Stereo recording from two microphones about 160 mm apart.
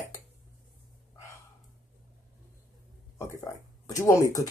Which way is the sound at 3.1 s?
15° left (ahead or behind).